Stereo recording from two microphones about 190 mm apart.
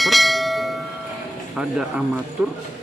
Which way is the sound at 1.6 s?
Centre (ahead or behind).